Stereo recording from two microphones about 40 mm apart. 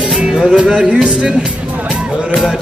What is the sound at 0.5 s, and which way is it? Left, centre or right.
Music, right.